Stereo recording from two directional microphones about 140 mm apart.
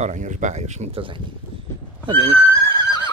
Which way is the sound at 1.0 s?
40° right (ahead or behind).